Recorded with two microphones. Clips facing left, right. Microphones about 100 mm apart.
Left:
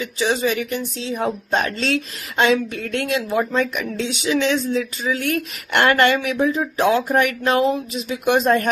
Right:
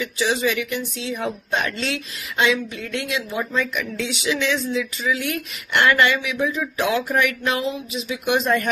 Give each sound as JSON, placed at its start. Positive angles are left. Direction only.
{"t": 0.0, "sound": "speech", "side_deg": 35}
{"t": 6.4, "sound": "speech", "side_deg": 35}